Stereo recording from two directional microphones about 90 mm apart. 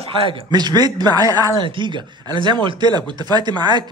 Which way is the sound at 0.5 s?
50° right (ahead or behind).